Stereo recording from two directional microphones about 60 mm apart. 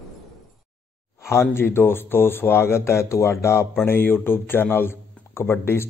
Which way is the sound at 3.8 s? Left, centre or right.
Left.